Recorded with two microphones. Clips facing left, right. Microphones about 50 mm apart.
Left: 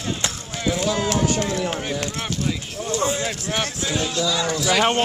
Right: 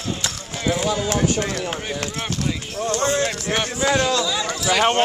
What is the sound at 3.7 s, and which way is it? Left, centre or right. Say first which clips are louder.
Speech: right 6 dB; right.